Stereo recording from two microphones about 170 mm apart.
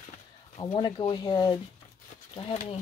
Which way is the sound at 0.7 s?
25° left (ahead or behind).